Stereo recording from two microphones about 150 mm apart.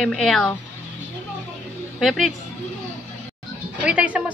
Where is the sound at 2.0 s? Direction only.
Centre (ahead or behind).